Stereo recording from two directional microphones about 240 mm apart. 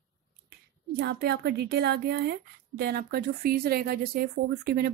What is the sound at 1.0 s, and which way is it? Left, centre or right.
A woman's voice, right.